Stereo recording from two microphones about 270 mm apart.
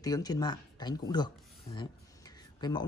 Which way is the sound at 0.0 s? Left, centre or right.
Centre.